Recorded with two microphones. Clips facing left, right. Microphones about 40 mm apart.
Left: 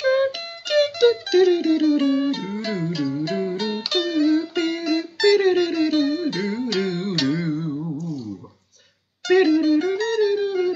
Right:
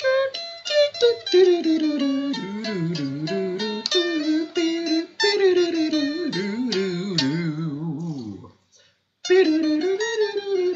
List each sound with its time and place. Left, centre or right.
0.0 s music: centre
9.6 s music: centre